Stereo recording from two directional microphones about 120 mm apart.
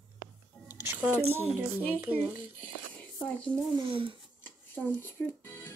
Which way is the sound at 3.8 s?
45° right (ahead or behind).